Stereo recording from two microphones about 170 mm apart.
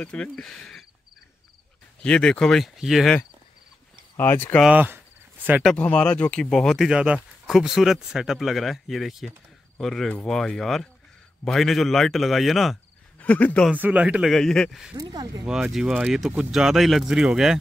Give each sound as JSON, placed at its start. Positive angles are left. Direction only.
{"t": 0.0, "sound": "speech", "side_deg": 5}
{"t": 2.0, "sound": "speech", "side_deg": 5}
{"t": 4.2, "sound": "speech", "side_deg": 10}
{"t": 4.6, "sound": "speech", "side_deg": -10}
{"t": 5.5, "sound": "speech", "side_deg": 0}
{"t": 13.7, "sound": "speech", "side_deg": -10}
{"t": 15.0, "sound": "speech", "side_deg": -20}
{"t": 15.4, "sound": "speech", "side_deg": -5}